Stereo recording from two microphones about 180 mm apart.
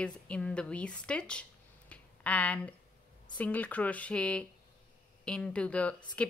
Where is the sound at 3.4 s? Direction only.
10° left (ahead or behind).